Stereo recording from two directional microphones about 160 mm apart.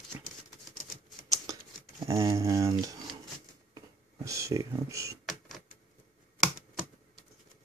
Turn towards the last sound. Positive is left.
turn(degrees=0)  # may be behind; listen again after turning